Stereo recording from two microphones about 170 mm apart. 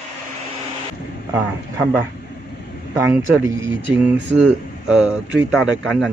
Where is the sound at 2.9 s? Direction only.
15° right (ahead or behind).